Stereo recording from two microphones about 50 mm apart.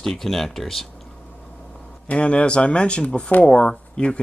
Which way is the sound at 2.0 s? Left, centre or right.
Left.